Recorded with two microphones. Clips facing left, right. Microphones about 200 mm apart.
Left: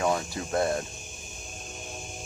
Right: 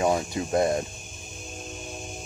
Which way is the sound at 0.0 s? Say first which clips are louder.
Right 3 dB; 20° right (ahead or behind).